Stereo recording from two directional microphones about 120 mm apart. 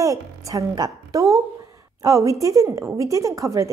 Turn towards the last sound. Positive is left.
turn(degrees=-25)  # may be behind; listen again after turning